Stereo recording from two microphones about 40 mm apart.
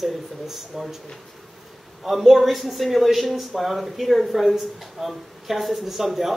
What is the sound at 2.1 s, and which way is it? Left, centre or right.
Speech, centre.